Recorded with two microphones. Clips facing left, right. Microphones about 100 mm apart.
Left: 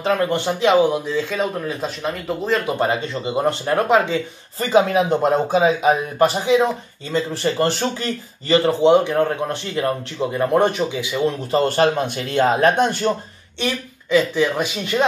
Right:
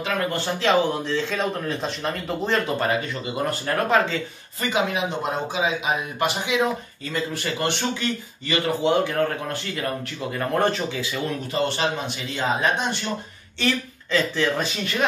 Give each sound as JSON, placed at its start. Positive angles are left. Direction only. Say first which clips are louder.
{"t": 0.3, "sound": "speech", "louder": "left 2 dB", "side_deg": 15}
{"t": 2.6, "sound": "speech", "louder": "left 3 dB", "side_deg": 20}
{"t": 4.6, "sound": "speech", "louder": "left 8 dB", "side_deg": 35}
{"t": 11.5, "sound": "speech", "louder": "left 7 dB", "side_deg": 45}
{"t": 13.6, "sound": "speech", "louder": "even", "side_deg": 15}